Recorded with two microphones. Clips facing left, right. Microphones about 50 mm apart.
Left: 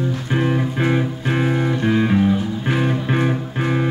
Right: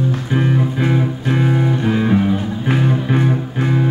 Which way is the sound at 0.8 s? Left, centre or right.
Centre.